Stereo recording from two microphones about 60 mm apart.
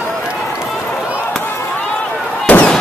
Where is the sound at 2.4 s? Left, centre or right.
Left.